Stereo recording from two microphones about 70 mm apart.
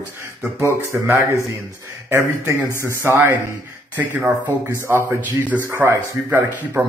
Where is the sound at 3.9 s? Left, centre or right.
Right.